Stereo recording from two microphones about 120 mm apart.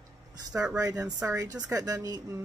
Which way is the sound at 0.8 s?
30° right (ahead or behind).